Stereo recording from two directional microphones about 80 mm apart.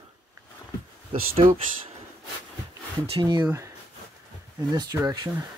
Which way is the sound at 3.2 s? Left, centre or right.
Right.